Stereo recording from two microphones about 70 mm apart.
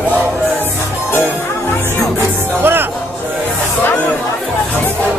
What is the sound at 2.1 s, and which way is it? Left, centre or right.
Music, right.